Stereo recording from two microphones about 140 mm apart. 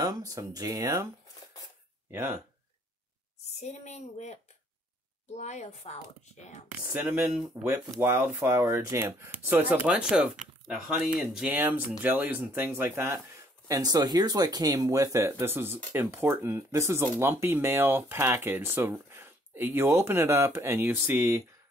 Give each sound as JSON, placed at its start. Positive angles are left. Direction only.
{"t": 0.0, "sound": "speech", "side_deg": -25}
{"t": 2.0, "sound": "speech", "side_deg": -15}
{"t": 3.5, "sound": "a woman's voice", "side_deg": 55}
{"t": 6.8, "sound": "speech", "side_deg": -10}
{"t": 11.5, "sound": "speech", "side_deg": -15}
{"t": 13.7, "sound": "speech", "side_deg": -25}